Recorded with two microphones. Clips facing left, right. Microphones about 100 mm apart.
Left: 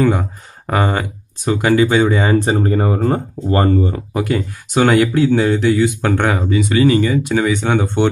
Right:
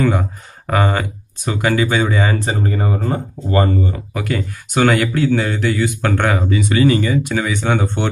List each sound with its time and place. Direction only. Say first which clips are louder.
0.0 s speech: left 2 dB; 10° left (ahead or behind)
2.0 s speech: left 4 dB; 25° left (ahead or behind)
2.6 s speech: left 4 dB; 45° left (ahead or behind)
4.1 s speech: left 3 dB; 20° left (ahead or behind)